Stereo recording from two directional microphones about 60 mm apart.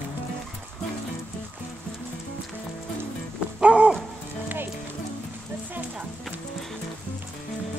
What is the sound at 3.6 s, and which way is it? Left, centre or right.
Dog, centre.